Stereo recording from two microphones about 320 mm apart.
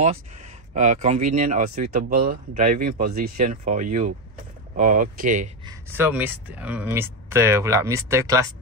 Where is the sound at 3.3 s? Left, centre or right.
Right.